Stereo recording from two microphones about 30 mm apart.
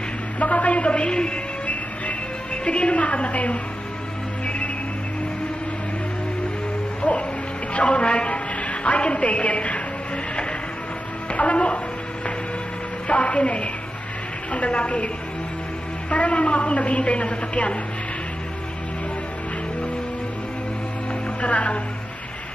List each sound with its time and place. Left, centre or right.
0.4 s a sound: left
2.5 s a woman's voice: left
7.0 s music: left
7.9 s a woman's voice: left
11.3 s a woman's voice: left
13.1 s a woman's voice: left
16.1 s a woman's voice: left
21.4 s speech: left